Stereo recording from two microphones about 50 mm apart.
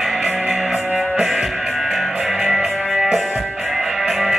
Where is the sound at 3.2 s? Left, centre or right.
Right.